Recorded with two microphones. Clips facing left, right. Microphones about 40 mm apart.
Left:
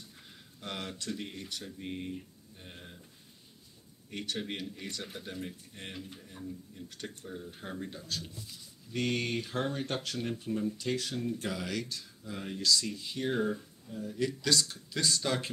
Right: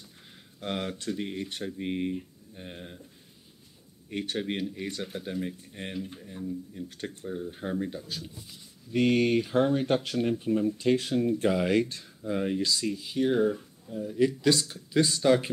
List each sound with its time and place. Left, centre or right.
0.6 s speech: right
4.4 s speech: right
10.8 s speech: right; by 13.9 s centre
13.9 s speech: right